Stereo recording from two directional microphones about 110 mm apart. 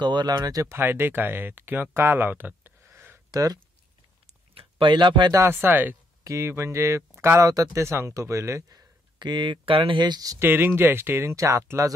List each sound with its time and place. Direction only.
0.0 s speech: 40° right (ahead or behind); by 3.2 s 20° right (ahead or behind)
3.3 s speech: 35° right (ahead or behind)
4.6 s speech: 50° right (ahead or behind)
5.3 s speech: 20° right (ahead or behind); by 10.3 s 40° right (ahead or behind)
10.4 s speech: 20° right (ahead or behind)